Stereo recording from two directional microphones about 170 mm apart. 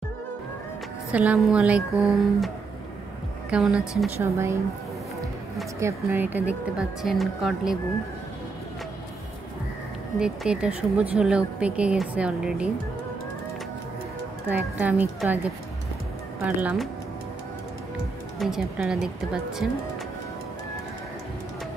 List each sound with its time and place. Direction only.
1.1 s a woman's voice: 10° right (ahead or behind)
5.8 s speech: 15° right (ahead or behind)
10.1 s speech: 5° right (ahead or behind)
14.5 s speech: 10° right (ahead or behind)
16.4 s speech: 5° right (ahead or behind)
18.4 s speech: 5° right (ahead or behind)